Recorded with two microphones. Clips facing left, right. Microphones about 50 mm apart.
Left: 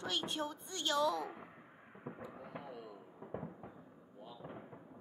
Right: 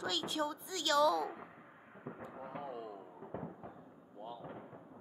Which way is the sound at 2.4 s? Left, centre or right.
Right.